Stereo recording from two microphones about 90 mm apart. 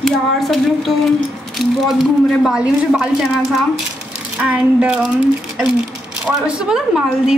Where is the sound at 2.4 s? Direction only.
10° right (ahead or behind).